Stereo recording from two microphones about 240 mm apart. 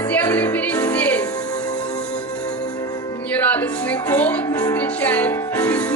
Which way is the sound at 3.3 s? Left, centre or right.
Centre.